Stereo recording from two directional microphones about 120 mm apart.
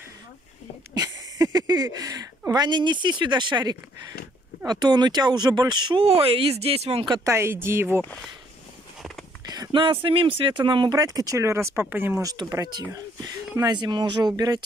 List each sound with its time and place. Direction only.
0.9 s speech: 35° right (ahead or behind)
6.0 s speech: 55° right (ahead or behind)
7.2 s speech: 20° right (ahead or behind)
9.5 s speech: 40° right (ahead or behind); by 12.2 s 15° right (ahead or behind)
12.2 s speech: 30° right (ahead or behind)